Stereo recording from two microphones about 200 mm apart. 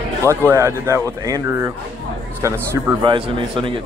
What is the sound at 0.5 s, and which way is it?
Speech, 15° right (ahead or behind).